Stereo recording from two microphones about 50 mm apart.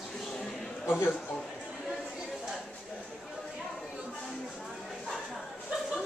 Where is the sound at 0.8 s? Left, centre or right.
Left.